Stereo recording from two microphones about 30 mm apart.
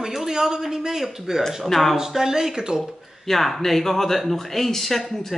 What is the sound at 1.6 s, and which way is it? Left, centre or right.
Speech, centre.